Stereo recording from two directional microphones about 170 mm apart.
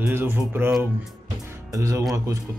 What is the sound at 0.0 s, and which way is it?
Speech, 10° right (ahead or behind).